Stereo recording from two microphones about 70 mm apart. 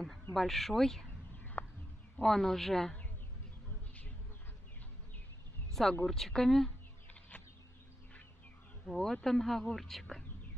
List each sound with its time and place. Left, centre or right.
0.0 s speech: centre
1.6 s bird: left
2.2 s speech: centre
5.7 s speech: centre
8.8 s speech: centre